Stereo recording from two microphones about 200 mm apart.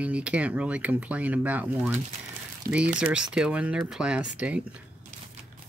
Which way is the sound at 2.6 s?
45° right (ahead or behind).